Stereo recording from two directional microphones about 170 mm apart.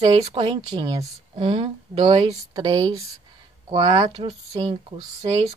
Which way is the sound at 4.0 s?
40° right (ahead or behind).